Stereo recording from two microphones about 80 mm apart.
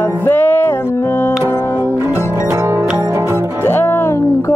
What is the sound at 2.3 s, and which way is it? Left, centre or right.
Music, right.